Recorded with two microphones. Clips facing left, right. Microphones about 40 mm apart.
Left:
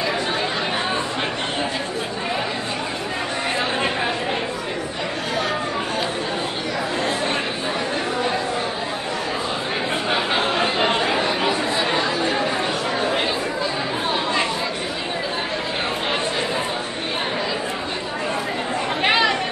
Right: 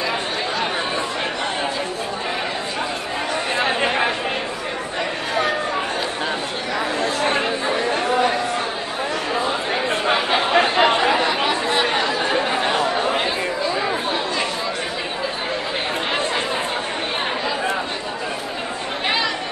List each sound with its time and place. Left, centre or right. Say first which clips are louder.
10.5 s chatter: right 4 dB; right
11.9 s chatter: right 1 dB; right